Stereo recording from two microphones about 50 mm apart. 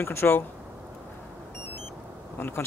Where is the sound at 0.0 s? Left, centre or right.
Left.